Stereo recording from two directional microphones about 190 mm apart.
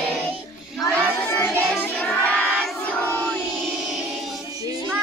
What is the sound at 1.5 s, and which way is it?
Child singing, centre (ahead or behind).